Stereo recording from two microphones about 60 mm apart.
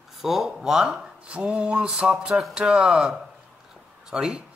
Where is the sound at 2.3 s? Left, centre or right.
Centre.